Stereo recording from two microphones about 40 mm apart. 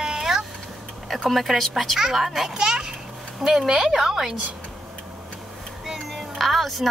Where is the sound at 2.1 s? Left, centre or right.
Centre.